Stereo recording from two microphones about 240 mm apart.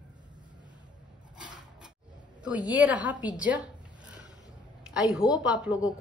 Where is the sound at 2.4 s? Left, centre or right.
Centre.